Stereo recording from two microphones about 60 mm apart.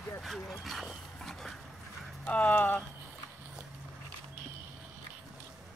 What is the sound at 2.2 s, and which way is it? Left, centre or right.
Speech, left.